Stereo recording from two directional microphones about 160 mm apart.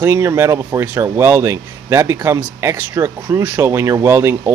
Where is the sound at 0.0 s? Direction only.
15° right (ahead or behind).